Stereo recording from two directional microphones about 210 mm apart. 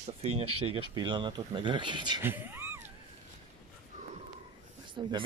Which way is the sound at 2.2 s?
10° right (ahead or behind).